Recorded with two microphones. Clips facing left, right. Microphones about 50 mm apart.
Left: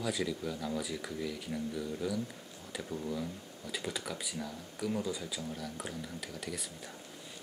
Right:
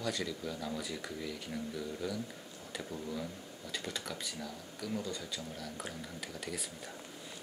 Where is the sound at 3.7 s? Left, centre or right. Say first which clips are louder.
Left 2 dB; centre.